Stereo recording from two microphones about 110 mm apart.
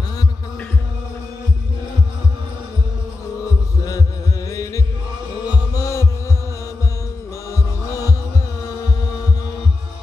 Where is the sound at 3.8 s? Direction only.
30° left (ahead or behind).